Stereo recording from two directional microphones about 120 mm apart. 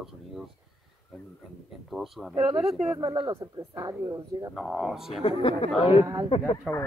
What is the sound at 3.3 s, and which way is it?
Speech, 30° right (ahead or behind).